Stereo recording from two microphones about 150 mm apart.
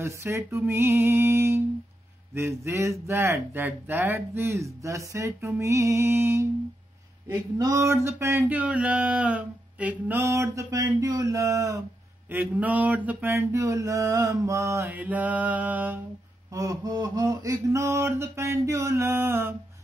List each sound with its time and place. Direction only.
0.0 s speech: 20° right (ahead or behind)
7.5 s speech: 20° right (ahead or behind)
16.4 s mantra: 25° right (ahead or behind)